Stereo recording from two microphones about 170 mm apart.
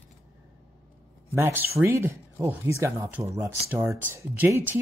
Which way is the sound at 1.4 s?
10° right (ahead or behind).